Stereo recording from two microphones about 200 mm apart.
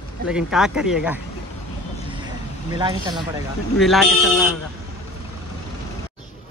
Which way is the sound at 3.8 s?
Centre (ahead or behind).